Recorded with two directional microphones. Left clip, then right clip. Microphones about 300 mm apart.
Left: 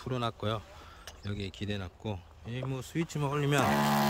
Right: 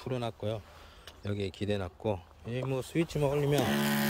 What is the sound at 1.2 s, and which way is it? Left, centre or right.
Speech, centre.